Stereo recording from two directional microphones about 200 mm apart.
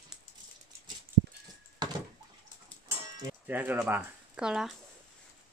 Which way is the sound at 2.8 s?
10° right (ahead or behind).